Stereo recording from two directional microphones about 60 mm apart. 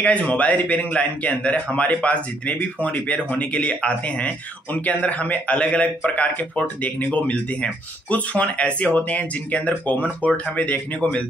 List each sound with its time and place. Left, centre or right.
0.0 s speech: left